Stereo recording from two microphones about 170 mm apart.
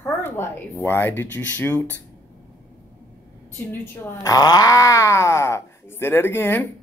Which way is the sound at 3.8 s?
20° left (ahead or behind).